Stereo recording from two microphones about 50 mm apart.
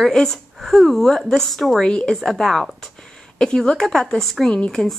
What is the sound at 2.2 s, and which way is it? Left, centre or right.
A woman's voice, centre.